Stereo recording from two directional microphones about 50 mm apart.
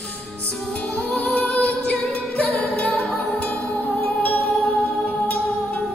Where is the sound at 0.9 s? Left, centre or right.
Left.